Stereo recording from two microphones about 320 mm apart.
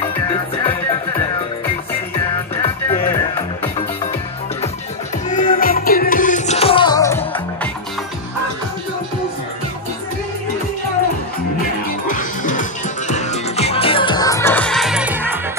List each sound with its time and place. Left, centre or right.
0.3 s music: centre
2.5 s music: centre
5.3 s music: left; by 7.7 s centre
12.1 s music: left; by 15.4 s centre